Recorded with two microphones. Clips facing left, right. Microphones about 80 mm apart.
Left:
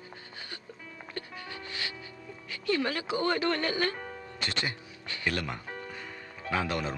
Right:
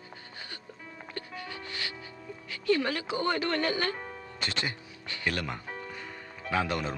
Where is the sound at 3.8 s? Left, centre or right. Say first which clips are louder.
Left 1 dB; centre.